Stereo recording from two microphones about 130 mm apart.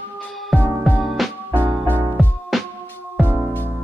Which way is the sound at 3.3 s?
15° left (ahead or behind).